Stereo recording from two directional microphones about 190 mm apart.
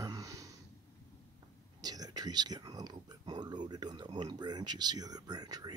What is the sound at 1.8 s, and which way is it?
Speech, 20° right (ahead or behind).